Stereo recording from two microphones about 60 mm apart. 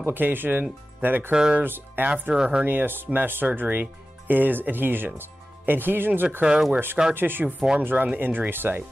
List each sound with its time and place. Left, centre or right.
0.0 s speech: right
1.3 s speech: centre
1.6 s speech: right
2.3 s speech: centre
2.6 s speech: right
6.4 s speech: centre
7.2 s speech: right